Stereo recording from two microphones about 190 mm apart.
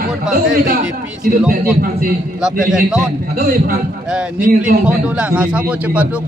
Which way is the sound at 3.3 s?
50° right (ahead or behind).